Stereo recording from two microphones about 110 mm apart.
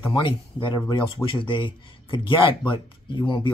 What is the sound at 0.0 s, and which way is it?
Speech, 50° left (ahead or behind).